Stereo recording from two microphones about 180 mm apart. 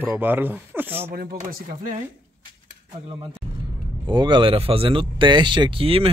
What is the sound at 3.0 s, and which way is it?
Speech, 30° right (ahead or behind).